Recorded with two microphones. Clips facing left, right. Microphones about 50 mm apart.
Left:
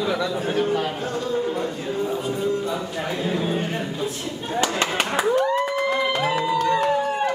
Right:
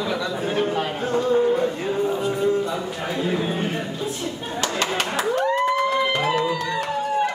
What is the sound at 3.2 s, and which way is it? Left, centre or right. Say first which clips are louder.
Speech: even; centre.